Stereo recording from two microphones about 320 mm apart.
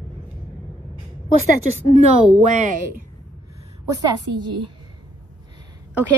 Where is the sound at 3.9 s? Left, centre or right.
Centre.